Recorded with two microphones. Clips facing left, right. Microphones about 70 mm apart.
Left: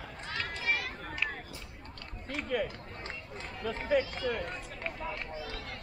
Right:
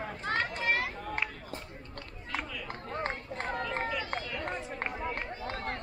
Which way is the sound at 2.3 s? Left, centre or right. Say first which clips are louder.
Left 4 dB; right.